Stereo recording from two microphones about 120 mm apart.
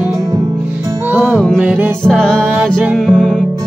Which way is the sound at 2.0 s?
5° left (ahead or behind).